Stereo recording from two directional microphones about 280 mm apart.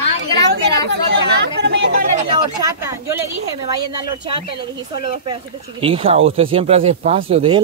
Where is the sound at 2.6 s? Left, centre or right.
Centre.